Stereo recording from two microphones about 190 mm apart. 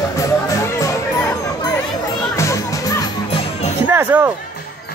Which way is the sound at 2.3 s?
15° left (ahead or behind).